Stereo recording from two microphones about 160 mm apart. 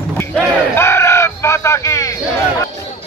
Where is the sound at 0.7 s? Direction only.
15° left (ahead or behind).